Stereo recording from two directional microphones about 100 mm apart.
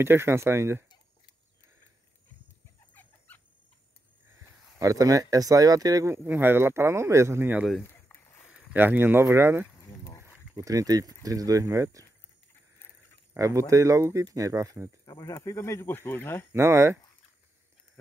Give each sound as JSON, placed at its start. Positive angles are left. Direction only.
{"t": 0.0, "sound": "speech", "side_deg": -25}
{"t": 2.9, "sound": "dog", "side_deg": 20}
{"t": 4.4, "sound": "speech", "side_deg": -30}
{"t": 7.8, "sound": "a sound", "side_deg": 25}
{"t": 8.7, "sound": "speech", "side_deg": -20}
{"t": 10.5, "sound": "speech", "side_deg": -35}
{"t": 13.4, "sound": "speech", "side_deg": -30}
{"t": 15.0, "sound": "speech", "side_deg": 45}
{"t": 15.3, "sound": "speech", "side_deg": 30}
{"t": 16.5, "sound": "speech", "side_deg": -30}